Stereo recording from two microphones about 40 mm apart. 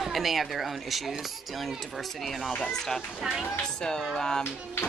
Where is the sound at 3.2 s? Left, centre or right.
Centre.